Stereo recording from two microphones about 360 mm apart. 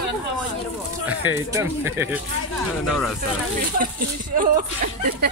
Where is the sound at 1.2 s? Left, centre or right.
Centre.